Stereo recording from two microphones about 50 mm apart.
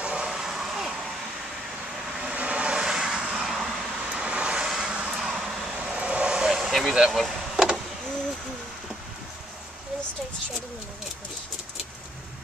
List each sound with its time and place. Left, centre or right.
0.0 s a sound: centre
2.2 s vehicle: right
3.4 s vehicle: centre
4.0 s vehicle: centre
5.2 s vehicle: centre
6.7 s speech: centre
7.3 s a sound: centre